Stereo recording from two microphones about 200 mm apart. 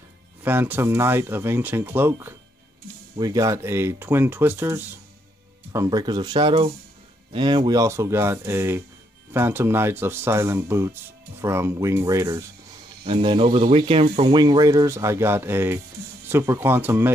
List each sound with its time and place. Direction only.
0.4 s speech: 10° right (ahead or behind)
13.0 s speech: 25° right (ahead or behind); by 17.1 s 10° right (ahead or behind)